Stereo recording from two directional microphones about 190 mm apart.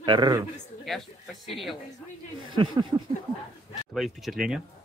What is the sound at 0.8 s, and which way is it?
Speech, centre (ahead or behind).